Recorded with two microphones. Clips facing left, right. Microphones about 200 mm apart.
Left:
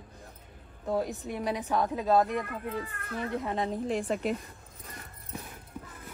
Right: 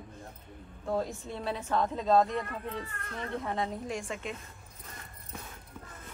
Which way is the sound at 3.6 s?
30° left (ahead or behind).